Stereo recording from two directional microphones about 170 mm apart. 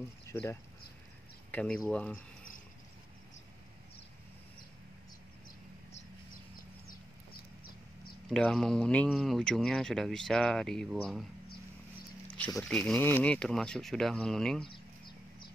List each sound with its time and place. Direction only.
0.3 s speech: 15° left (ahead or behind)
8.3 s speech: 5° left (ahead or behind)
12.5 s speech: 5° left (ahead or behind)
14.6 s a sound: 30° left (ahead or behind)